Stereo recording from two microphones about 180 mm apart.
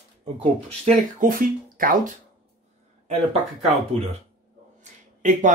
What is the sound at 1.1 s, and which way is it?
Speech, 50° right (ahead or behind).